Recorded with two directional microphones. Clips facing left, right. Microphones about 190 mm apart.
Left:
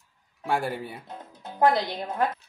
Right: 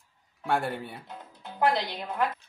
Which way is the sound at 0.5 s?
5° left (ahead or behind).